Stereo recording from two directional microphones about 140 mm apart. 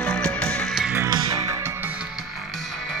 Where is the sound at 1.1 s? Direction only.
30° right (ahead or behind).